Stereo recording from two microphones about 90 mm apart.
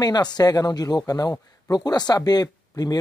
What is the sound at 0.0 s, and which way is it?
Speech, 50° left (ahead or behind).